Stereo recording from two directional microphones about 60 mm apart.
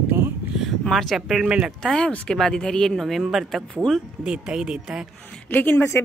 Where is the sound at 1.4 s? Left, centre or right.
Centre.